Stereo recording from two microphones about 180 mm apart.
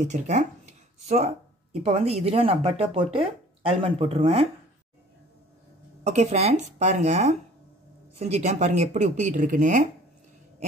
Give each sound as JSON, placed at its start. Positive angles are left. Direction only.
{"t": 0.0, "sound": "speech", "side_deg": -40}
{"t": 6.0, "sound": "speech", "side_deg": -35}